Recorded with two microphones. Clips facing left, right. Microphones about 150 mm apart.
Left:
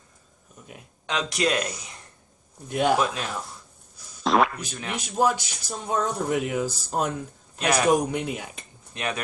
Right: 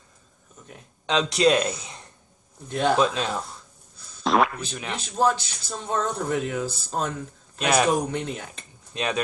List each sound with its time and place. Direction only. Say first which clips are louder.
1.0 s a man's voice: right 5 dB; 20° right (ahead or behind)
2.7 s speech: left 1 dB; 10° left (ahead or behind)
3.2 s speech: right 4 dB; 20° right (ahead or behind)
4.2 s a sound: even; centre (ahead or behind)
4.9 s speech: even; 15° left (ahead or behind)
7.5 s speech: right 2 dB; 20° right (ahead or behind)
7.8 s speech: left 2 dB; 10° left (ahead or behind)
8.9 s speech: right 3 dB; 20° right (ahead or behind)